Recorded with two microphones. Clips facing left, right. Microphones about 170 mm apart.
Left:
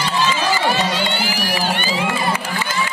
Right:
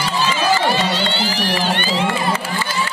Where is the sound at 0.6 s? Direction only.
10° left (ahead or behind).